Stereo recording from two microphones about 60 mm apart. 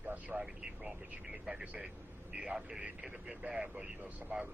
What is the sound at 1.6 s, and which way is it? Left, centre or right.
Speech, right.